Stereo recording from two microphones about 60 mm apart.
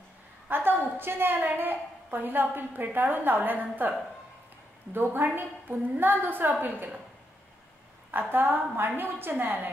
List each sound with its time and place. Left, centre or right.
0.5 s a woman's voice: right
4.9 s a woman's voice: right
8.1 s a woman's voice: right